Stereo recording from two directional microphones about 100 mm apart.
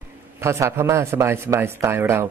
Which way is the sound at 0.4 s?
30° right (ahead or behind).